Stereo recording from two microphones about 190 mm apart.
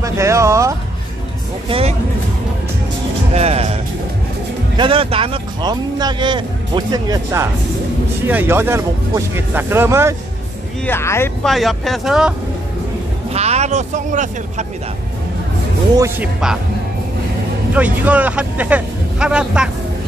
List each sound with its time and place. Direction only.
0.0 s speech: 15° right (ahead or behind)
1.7 s speech: 30° right (ahead or behind)
3.3 s speech: 35° right (ahead or behind)
4.7 s speech: 25° right (ahead or behind)
10.9 s speech: 15° left (ahead or behind)
11.4 s speech: centre (ahead or behind)
13.3 s speech: 35° right (ahead or behind)
16.0 s speech: 5° right (ahead or behind)
17.7 s speech: 10° right (ahead or behind)